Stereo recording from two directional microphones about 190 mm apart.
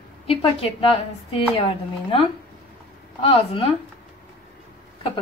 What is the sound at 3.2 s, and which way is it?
Speech, 30° left (ahead or behind).